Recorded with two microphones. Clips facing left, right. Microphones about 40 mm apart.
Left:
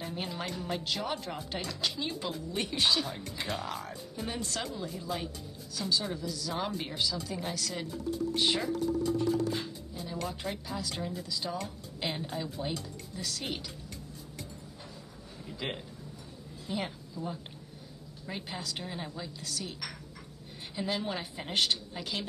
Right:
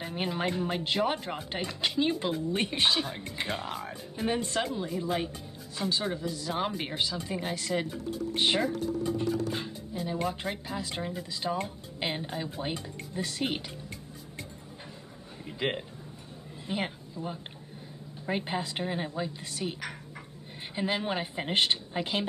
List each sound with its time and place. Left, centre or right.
0.0 s speech: right
11.6 s speech: right
15.4 s a woman's voice: right